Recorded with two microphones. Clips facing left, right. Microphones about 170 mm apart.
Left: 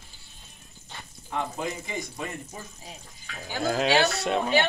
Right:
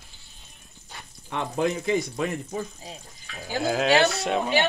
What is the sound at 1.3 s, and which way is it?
Speech, 85° right.